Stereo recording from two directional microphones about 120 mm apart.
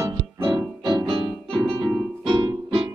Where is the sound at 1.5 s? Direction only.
50° right (ahead or behind).